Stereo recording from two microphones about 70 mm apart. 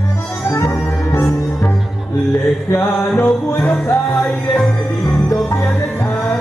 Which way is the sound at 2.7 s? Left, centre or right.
Left.